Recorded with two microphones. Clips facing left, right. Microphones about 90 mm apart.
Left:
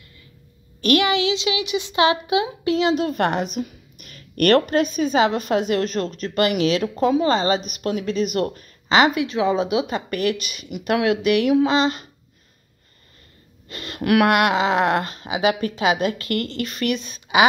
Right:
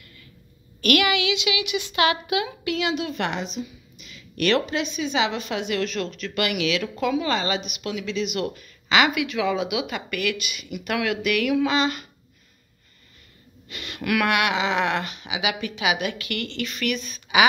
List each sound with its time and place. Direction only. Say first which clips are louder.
0.7 s a woman's voice: left 3 dB; 30° left (ahead or behind)
13.7 s a woman's voice: left 6 dB; 35° left (ahead or behind)